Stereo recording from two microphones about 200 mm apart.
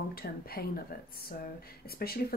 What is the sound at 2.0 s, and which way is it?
Speech, 50° left (ahead or behind).